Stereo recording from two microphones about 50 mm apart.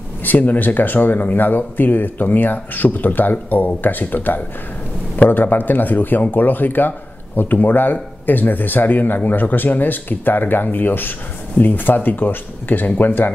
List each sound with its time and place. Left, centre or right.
0.2 s speech: left